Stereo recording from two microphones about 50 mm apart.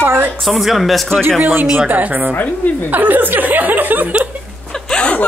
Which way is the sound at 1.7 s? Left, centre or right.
Right.